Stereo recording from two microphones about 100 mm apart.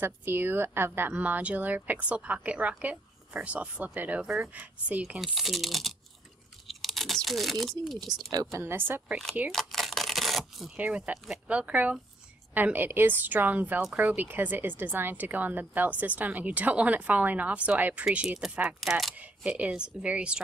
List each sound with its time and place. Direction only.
0.0 s a woman's voice: 20° right (ahead or behind)
5.2 s speech: centre (ahead or behind)
6.7 s crunch: centre (ahead or behind)
7.8 s speech: centre (ahead or behind)
8.1 s speech: 40° right (ahead or behind); by 9.2 s 20° right (ahead or behind)
9.5 s a sound: 5° left (ahead or behind)
10.8 s a woman's voice: 15° right (ahead or behind)
18.8 s speech: centre (ahead or behind)
19.1 s a woman's voice: 15° right (ahead or behind)